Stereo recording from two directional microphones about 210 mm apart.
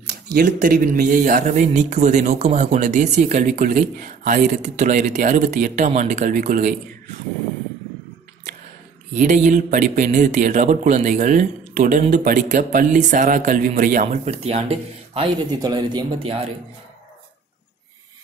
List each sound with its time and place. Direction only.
0.1 s speech: 45° right (ahead or behind)
9.1 s speech: 35° right (ahead or behind); by 16.1 s 20° right (ahead or behind)